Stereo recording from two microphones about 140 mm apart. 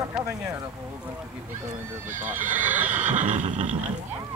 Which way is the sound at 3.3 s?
65° right (ahead or behind).